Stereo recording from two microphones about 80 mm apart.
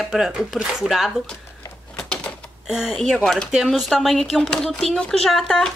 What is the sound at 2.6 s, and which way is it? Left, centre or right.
Speech, centre.